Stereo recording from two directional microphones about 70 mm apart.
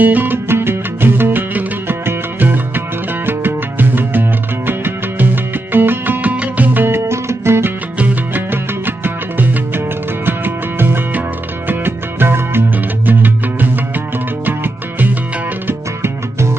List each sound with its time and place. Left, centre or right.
0.0 s music: right
8.0 s music: right
15.6 s music: right